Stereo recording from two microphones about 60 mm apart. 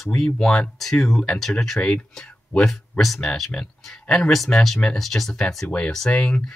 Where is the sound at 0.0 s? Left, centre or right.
Centre.